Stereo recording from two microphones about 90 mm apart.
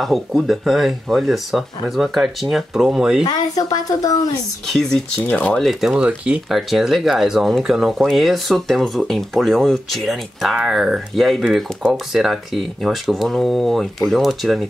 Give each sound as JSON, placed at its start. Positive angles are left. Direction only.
{"t": 0.0, "sound": "speech", "side_deg": 0}
{"t": 3.3, "sound": "a woman's voice", "side_deg": 45}
{"t": 4.7, "sound": "speech", "side_deg": 5}
{"t": 6.5, "sound": "speech", "side_deg": 0}